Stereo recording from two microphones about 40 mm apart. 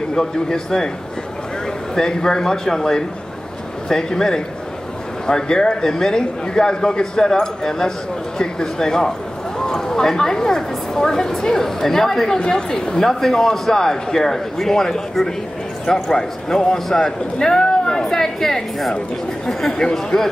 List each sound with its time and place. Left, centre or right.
0.1 s a man's voice: centre
2.0 s a man's voice: centre
12.4 s speech: centre
13.1 s a man's voice: centre